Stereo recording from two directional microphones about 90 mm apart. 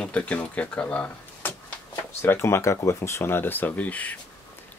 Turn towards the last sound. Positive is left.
turn(degrees=15)  # may be behind; listen again after turning